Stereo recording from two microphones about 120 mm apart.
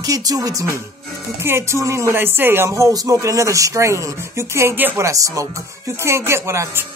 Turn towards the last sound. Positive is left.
turn(degrees=-20)  # may be behind; listen again after turning